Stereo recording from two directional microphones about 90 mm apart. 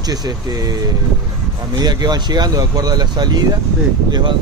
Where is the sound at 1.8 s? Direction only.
50° right (ahead or behind).